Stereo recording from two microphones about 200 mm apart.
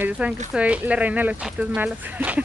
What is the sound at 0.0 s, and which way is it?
Speech, 5° right (ahead or behind).